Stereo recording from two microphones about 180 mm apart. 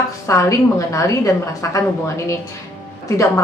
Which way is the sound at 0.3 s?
15° left (ahead or behind).